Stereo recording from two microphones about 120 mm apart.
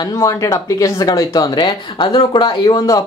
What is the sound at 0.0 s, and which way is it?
Speech, 30° left (ahead or behind).